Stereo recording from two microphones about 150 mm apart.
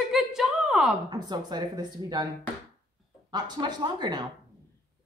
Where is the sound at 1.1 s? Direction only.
30° right (ahead or behind).